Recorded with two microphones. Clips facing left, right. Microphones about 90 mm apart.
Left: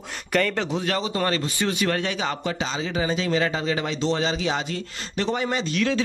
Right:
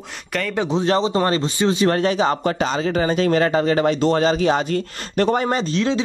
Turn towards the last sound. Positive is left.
turn(degrees=-30)  # may be behind; listen again after turning